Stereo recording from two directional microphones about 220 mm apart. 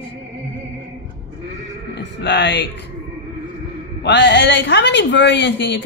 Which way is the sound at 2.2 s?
50° left (ahead or behind).